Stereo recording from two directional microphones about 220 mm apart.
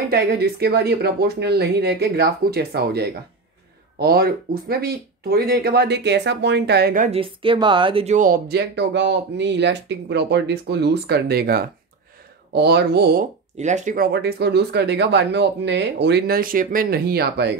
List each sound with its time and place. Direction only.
0.1 s speech: 45° right (ahead or behind)
7.1 s speech: 25° right (ahead or behind); by 17.5 s 45° right (ahead or behind)